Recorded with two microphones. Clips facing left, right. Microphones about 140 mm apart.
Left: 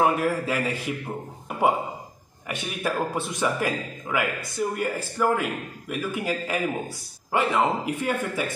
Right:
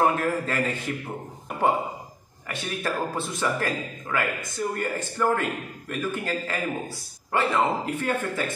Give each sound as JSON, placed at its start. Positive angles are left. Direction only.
{"t": 0.0, "sound": "a man's voice", "side_deg": 10}
{"t": 2.4, "sound": "a man's voice", "side_deg": 15}